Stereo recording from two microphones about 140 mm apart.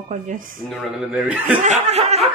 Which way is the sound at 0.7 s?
Centre (ahead or behind).